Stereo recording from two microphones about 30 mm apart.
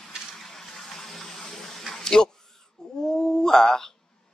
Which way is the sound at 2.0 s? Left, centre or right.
Centre.